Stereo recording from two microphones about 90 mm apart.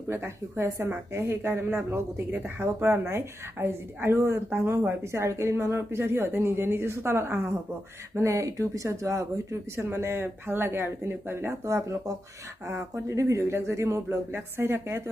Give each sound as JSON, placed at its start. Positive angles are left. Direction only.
{"t": 0.1, "sound": "a woman's voice", "side_deg": -30}